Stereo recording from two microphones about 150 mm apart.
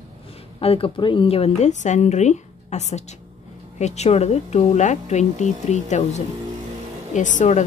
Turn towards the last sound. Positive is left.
turn(degrees=55)  # may be behind; listen again after turning